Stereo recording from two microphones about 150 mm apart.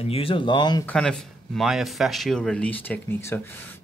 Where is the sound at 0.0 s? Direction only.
40° left (ahead or behind).